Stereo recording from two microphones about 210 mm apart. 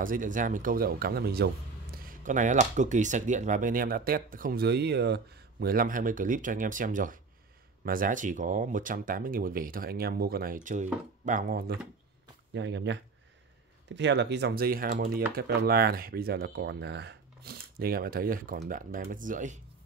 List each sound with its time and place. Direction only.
0.0 s speech: 40° right (ahead or behind)
2.0 s speech: 35° right (ahead or behind)
12.5 s speech: 60° right (ahead or behind); by 19.6 s 35° right (ahead or behind)